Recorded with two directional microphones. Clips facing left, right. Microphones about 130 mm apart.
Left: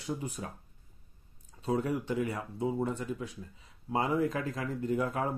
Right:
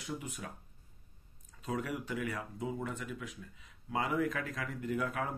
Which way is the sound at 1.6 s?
30° left (ahead or behind).